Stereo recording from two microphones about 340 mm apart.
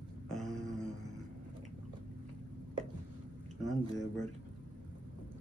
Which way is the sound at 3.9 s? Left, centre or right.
Centre.